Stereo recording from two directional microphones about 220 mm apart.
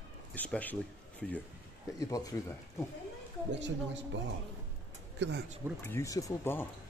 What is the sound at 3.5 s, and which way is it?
Speech, 55° right (ahead or behind).